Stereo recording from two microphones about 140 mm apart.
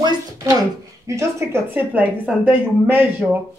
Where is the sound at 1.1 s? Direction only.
20° right (ahead or behind).